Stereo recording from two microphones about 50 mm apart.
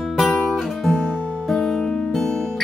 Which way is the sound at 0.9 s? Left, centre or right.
Left.